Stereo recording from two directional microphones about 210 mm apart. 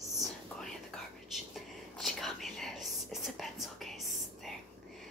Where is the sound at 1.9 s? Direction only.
Centre (ahead or behind).